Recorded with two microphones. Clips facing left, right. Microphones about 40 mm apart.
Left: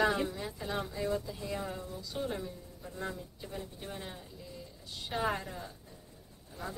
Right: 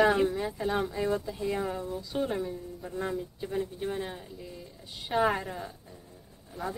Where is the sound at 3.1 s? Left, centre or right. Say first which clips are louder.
Right 10 dB; right.